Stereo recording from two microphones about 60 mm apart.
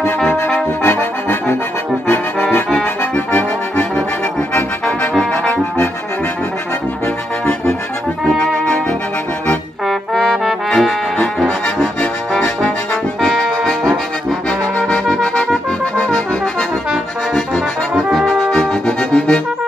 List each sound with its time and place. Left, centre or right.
0.8 s trombone: left
3.0 s accordion: left
5.1 s trombone: centre
10.7 s trombone: centre
13.2 s brass instrument: centre
14.8 s music: centre
16.9 s trombone: centre